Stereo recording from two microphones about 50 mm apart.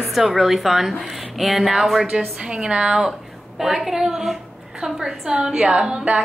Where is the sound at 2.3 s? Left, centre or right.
Right.